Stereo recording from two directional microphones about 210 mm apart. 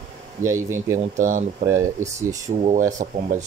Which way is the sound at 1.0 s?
40° right (ahead or behind).